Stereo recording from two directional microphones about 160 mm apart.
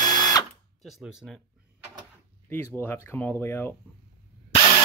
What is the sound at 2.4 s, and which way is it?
Speech, 15° left (ahead or behind).